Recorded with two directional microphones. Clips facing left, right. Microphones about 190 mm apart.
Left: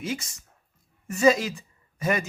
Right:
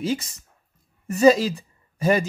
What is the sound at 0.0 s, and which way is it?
Speech, 30° right (ahead or behind).